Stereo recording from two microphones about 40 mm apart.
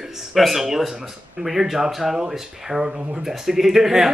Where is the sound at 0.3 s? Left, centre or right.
Centre.